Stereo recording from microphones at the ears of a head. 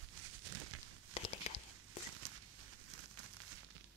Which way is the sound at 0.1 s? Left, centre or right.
Right.